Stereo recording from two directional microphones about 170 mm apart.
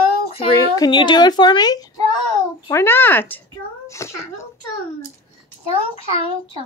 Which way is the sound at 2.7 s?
15° left (ahead or behind).